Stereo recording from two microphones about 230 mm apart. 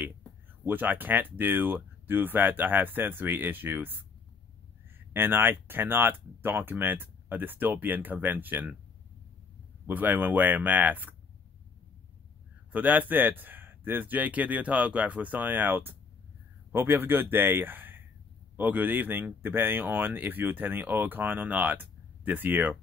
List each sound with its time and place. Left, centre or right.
0.7 s speech: centre
4.9 s speech: centre
9.8 s speech: centre
12.7 s speech: centre